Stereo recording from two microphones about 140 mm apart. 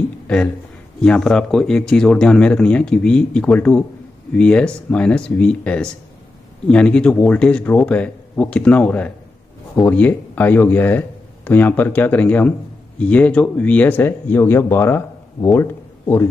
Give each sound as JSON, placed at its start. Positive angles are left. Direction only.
{"t": 1.0, "sound": "speech", "side_deg": 5}